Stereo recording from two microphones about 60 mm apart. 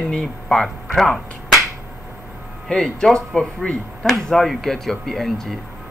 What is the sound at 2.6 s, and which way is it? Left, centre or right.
Speech, centre.